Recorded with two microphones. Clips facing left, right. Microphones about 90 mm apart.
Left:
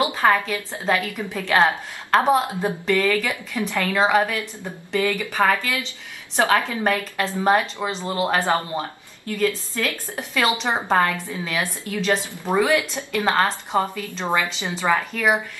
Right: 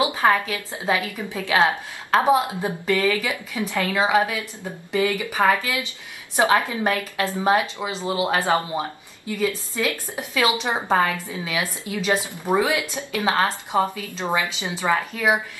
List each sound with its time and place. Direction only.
0.0 s a woman's voice: 10° right (ahead or behind)